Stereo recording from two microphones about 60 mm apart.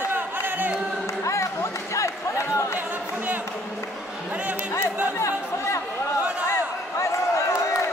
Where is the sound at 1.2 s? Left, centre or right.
Left.